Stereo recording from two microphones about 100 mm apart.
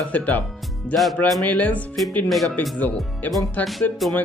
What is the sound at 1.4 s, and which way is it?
Speech, 15° left (ahead or behind).